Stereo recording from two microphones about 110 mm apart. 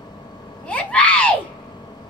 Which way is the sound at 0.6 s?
10° left (ahead or behind).